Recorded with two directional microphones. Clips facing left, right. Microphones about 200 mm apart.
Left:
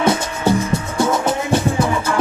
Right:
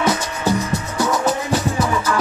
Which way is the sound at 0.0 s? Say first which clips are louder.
Left 3 dB; 25° left (ahead or behind).